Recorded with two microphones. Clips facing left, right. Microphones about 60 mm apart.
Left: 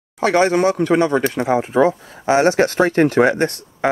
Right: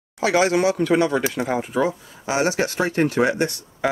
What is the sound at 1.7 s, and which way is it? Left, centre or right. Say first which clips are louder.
Speech: left 6 dB; left.